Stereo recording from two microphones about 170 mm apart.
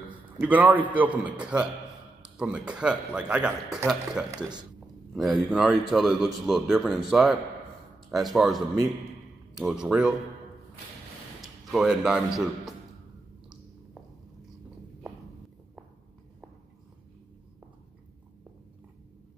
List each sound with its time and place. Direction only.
0.4 s a man's voice: 10° right (ahead or behind)
4.3 s speech: 25° right (ahead or behind)
5.1 s speech: centre (ahead or behind)
11.7 s speech: centre (ahead or behind)